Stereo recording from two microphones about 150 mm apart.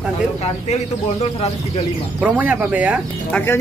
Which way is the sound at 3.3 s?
15° left (ahead or behind).